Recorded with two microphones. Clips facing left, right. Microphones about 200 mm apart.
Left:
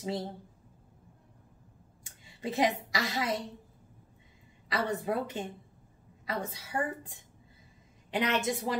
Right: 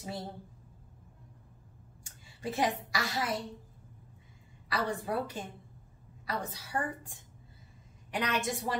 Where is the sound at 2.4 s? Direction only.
20° left (ahead or behind).